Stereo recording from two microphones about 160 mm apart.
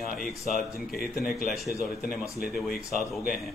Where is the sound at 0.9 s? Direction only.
70° left (ahead or behind).